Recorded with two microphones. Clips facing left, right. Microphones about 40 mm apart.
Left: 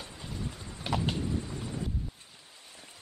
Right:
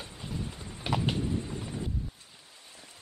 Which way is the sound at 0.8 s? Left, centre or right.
Centre.